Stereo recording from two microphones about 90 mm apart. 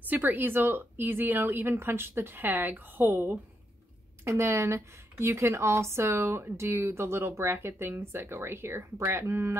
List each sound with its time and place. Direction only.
0.1 s speech: 20° right (ahead or behind)